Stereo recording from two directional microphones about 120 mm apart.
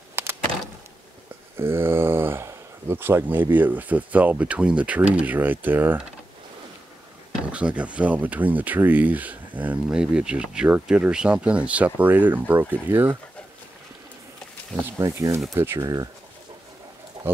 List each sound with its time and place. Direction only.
0.1 s a sound: 20° right (ahead or behind)
1.6 s speech: 20° right (ahead or behind)
7.5 s speech: 10° right (ahead or behind)
15.0 s speech: 25° right (ahead or behind)
17.2 s pigeon: 40° right (ahead or behind)